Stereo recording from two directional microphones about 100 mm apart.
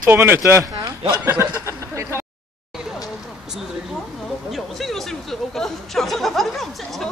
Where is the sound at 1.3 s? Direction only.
30° right (ahead or behind).